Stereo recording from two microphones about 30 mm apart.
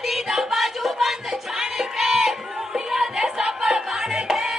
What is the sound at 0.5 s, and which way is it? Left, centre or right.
Music, centre.